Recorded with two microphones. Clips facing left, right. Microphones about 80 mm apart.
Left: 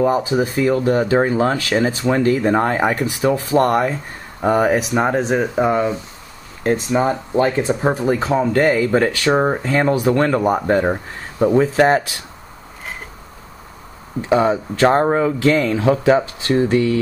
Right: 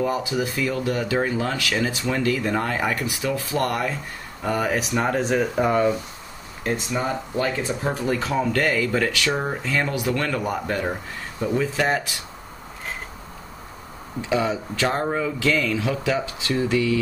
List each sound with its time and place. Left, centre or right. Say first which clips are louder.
0.0 s speech: left 7 dB; left
6.6 s speech: left 8 dB; left
14.2 s speech: left 7 dB; left